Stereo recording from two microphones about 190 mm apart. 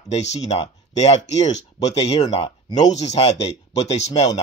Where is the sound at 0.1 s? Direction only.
35° left (ahead or behind).